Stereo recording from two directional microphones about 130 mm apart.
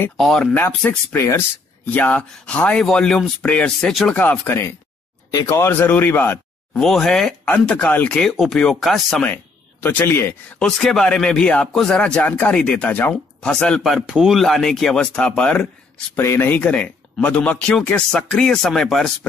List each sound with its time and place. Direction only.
0.2 s speech: 5° left (ahead or behind)
0.6 s speech: 15° left (ahead or behind)
5.3 s speech: 30° left (ahead or behind)
5.6 s speech: 15° left (ahead or behind)
6.7 s speech: 5° left (ahead or behind)
9.8 s speech: 15° left (ahead or behind)
10.6 s speech: 5° left (ahead or behind)
16.2 s speech: 20° left (ahead or behind)